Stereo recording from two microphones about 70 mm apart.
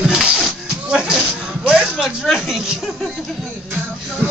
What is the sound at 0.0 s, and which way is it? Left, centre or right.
Music, centre.